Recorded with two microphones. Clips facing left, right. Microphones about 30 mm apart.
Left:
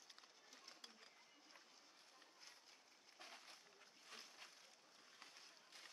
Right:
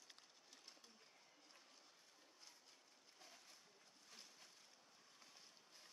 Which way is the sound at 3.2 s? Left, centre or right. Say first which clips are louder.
Left 5 dB; left.